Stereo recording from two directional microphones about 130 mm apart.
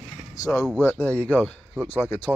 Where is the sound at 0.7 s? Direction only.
15° left (ahead or behind).